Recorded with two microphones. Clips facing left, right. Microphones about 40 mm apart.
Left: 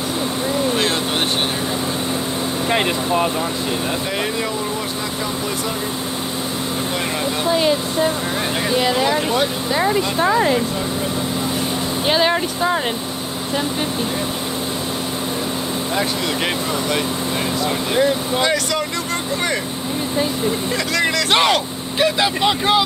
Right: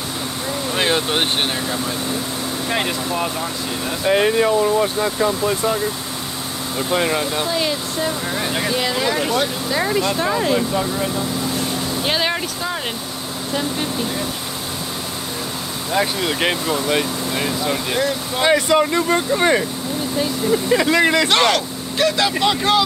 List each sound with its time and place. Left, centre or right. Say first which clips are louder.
0.7 s vehicle: right 1 dB; centre
2.7 s speech: left 4 dB; centre
4.1 s speech: right 7 dB; right
7.5 s speech: left 4 dB; centre
10.2 s speech: left 4 dB; left
12.1 s speech: left 4 dB; centre
15.9 s speech: right 4 dB; centre
17.9 s speech: left 4 dB; centre
18.4 s speech: right 9 dB; right
20.7 s speech: right 7 dB; right
21.3 s speech: even; centre